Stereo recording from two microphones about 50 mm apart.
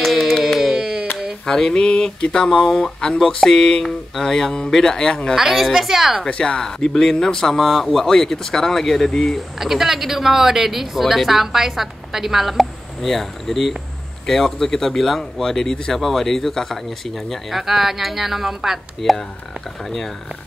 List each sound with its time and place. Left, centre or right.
0.0 s a sound: centre
1.4 s speech: centre
3.5 s speech: left
3.8 s speech: centre
4.3 s speech: centre
5.3 s speech: centre
6.2 s speech: centre
9.6 s speech: centre
16.0 s speech: centre